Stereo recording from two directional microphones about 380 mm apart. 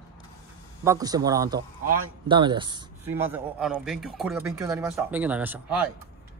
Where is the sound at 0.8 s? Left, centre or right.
Centre.